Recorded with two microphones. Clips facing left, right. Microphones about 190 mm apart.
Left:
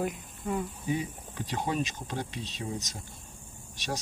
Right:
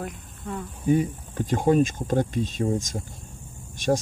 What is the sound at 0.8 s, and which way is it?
Speech, 50° right (ahead or behind).